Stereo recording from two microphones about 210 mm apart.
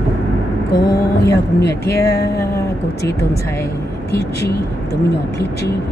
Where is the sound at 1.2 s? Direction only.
50° left (ahead or behind).